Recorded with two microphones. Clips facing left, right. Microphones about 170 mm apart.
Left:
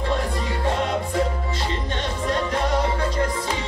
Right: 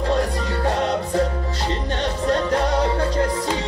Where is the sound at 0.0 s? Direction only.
40° right (ahead or behind).